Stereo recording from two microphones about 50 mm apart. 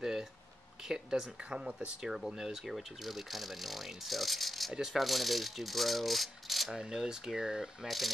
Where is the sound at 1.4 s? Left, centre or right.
Right.